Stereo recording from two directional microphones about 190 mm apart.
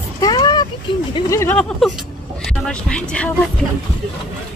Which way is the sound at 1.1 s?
15° left (ahead or behind).